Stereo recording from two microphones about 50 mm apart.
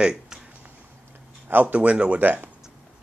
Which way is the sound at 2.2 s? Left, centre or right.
Right.